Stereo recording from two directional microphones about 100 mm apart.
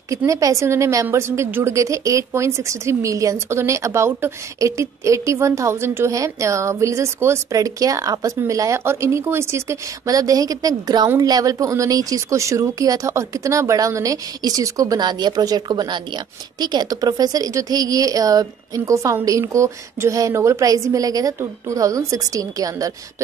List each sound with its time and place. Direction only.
0.3 s a woman's voice: 30° right (ahead or behind)